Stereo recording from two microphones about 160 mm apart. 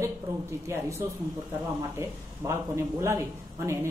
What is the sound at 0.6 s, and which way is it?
Speech, 15° right (ahead or behind).